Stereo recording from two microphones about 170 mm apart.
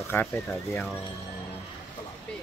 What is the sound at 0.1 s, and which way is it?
Speech, 10° left (ahead or behind).